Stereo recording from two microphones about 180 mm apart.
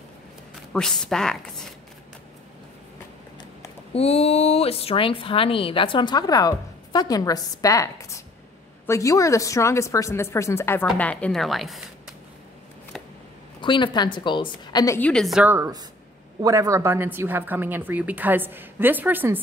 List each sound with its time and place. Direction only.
0.7 s a woman's voice: 5° left (ahead or behind)
3.9 s a woman's voice: 35° left (ahead or behind); by 11.8 s centre (ahead or behind)
13.6 s speech: 25° left (ahead or behind)
15.0 s a woman's voice: 5° left (ahead or behind); by 19.4 s 10° right (ahead or behind)